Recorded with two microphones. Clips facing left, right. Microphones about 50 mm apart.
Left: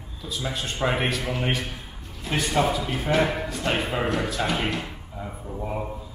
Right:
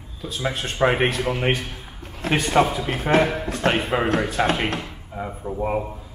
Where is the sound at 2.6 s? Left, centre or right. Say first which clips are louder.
Right 3 dB; right.